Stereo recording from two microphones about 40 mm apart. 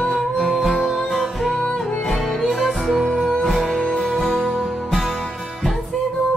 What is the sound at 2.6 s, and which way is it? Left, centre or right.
Music, centre.